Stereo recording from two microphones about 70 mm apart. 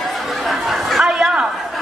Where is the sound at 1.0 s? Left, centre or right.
Centre.